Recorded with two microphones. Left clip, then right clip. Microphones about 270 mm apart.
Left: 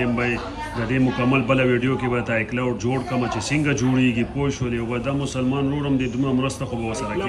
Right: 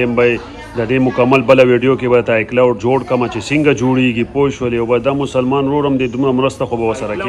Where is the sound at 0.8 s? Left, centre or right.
Centre.